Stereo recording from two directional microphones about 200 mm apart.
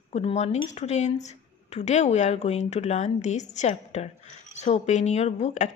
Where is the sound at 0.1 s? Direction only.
30° left (ahead or behind).